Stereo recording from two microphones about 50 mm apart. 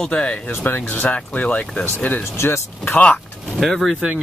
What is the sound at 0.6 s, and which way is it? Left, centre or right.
Speech, left.